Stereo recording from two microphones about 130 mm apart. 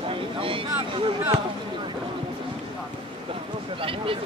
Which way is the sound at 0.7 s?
45° right (ahead or behind).